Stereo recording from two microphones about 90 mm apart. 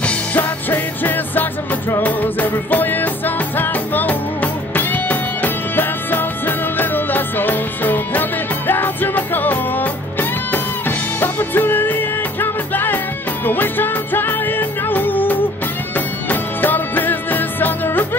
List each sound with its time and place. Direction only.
0.0 s music: 15° left (ahead or behind)